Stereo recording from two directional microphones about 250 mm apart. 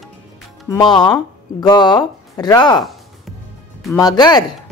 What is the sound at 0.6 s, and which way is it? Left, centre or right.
Speech, centre.